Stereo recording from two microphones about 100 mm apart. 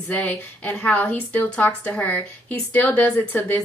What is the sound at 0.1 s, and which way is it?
A woman's voice, 20° left (ahead or behind).